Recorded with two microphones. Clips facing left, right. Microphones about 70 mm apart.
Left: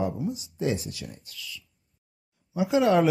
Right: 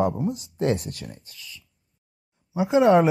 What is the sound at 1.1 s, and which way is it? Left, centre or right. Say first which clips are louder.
Speech: even; right.